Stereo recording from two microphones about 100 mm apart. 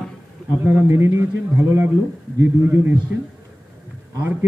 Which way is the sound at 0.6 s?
20° right (ahead or behind).